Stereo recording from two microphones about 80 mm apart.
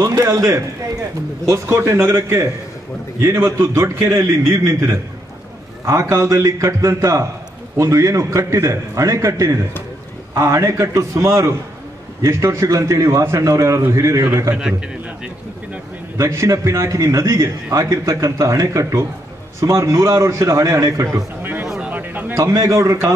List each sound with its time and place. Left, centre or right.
0.0 s a man's voice: right
14.5 s a man's voice: centre
16.2 s a man's voice: right
21.4 s a sound: right
22.4 s a man's voice: right